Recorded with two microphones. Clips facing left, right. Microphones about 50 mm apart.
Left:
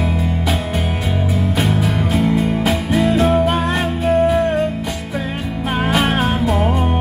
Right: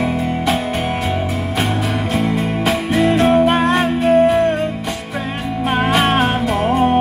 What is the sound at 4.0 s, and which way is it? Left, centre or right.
Music, right.